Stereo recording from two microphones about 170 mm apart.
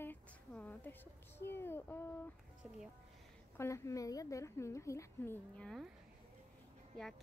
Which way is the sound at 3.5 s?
15° left (ahead or behind).